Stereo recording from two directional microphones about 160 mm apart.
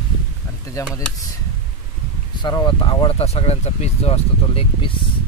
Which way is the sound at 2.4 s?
25° left (ahead or behind).